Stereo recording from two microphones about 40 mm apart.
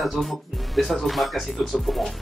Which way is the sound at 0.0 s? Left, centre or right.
Centre.